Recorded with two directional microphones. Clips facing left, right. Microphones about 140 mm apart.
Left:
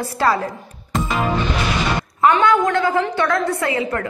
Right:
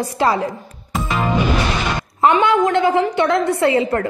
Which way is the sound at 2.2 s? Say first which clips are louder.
Right 1 dB; 25° right (ahead or behind).